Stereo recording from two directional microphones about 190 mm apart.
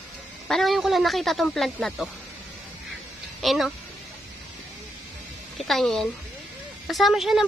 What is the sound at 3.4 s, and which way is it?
Speech, centre (ahead or behind).